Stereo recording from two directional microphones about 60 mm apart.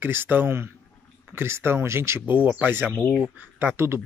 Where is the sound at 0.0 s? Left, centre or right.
Right.